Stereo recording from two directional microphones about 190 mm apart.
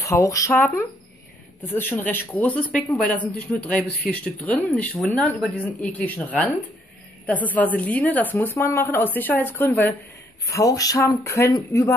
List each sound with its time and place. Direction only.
0.0 s speech: 15° left (ahead or behind)